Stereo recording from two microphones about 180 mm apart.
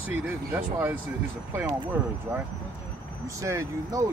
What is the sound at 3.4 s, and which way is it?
Speech, 15° right (ahead or behind).